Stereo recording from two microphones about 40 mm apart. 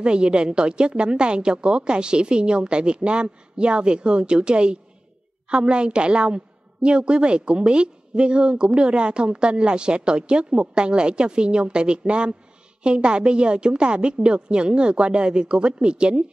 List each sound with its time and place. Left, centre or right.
0.0 s a woman's voice: right